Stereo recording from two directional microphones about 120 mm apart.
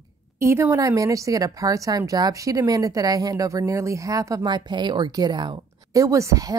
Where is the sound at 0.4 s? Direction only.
20° right (ahead or behind).